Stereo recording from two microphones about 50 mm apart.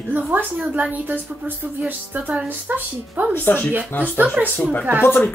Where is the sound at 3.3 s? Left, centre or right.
Left.